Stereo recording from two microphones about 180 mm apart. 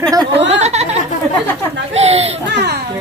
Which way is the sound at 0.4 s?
35° right (ahead or behind).